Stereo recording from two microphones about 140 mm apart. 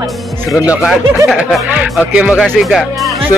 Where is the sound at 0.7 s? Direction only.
5° right (ahead or behind).